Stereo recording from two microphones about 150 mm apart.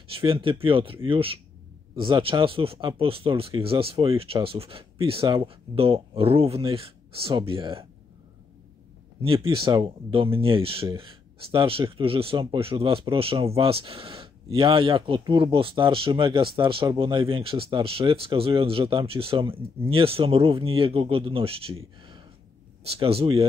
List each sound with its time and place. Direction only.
0.1 s speech: 35° right (ahead or behind)
9.2 s speech: 35° right (ahead or behind)